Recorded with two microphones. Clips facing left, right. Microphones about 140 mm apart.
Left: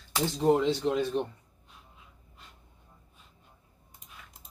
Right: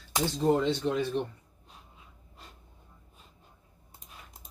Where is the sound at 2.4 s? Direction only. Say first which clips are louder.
Right 3 dB; 35° right (ahead or behind).